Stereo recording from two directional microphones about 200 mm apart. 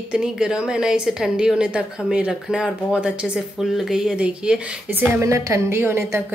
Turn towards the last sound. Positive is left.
turn(degrees=-10)  # may be behind; listen again after turning